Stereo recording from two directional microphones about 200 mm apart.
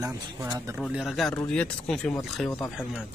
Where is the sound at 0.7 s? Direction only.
Centre (ahead or behind).